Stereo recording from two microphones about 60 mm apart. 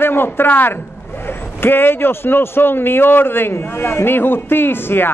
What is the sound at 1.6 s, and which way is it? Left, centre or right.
A man's voice, left.